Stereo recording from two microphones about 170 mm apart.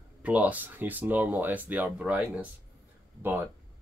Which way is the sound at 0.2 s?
10° right (ahead or behind).